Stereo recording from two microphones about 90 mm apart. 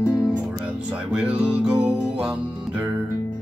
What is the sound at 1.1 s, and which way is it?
Music, 15° right (ahead or behind).